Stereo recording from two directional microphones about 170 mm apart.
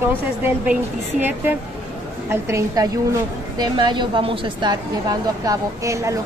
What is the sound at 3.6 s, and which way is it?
A woman's voice, 25° right (ahead or behind).